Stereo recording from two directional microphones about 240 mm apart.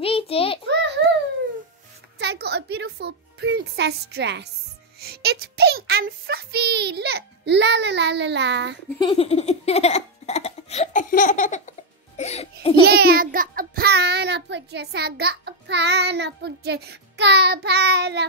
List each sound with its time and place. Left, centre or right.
0.0 s a sound: left
2.1 s music: right
5.0 s child singing: right
9.0 s laughter: left
12.2 s music: left
12.8 s child singing: right